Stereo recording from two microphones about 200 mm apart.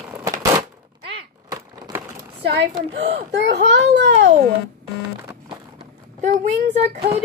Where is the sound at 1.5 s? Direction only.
15° right (ahead or behind).